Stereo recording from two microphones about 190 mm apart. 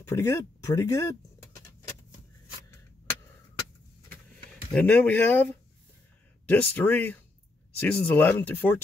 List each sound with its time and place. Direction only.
0.0 s speech: 15° left (ahead or behind)
4.7 s speech: 5° left (ahead or behind)